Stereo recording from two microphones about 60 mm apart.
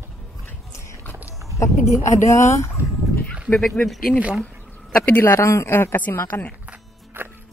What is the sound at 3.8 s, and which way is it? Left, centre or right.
Speech, left.